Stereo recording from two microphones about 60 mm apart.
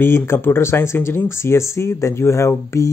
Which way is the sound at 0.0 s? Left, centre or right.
Left.